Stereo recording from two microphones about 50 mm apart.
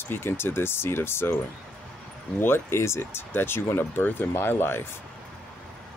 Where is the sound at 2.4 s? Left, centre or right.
Left.